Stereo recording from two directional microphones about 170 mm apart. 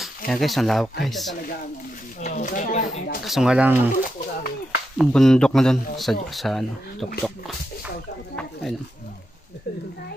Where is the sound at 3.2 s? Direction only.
Centre (ahead or behind).